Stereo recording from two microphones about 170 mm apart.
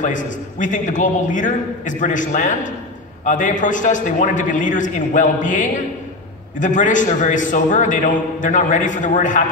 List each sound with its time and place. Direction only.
0.0 s a man's voice: 50° left (ahead or behind)